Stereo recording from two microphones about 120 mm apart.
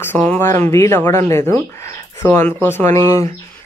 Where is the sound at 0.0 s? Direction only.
15° left (ahead or behind).